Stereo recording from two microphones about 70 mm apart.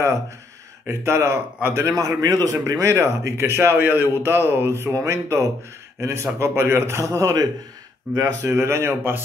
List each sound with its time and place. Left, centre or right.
0.8 s a man's voice: right
2.2 s a man's voice: right
5.0 s a man's voice: right
7.1 s speech: right
8.5 s a man's voice: right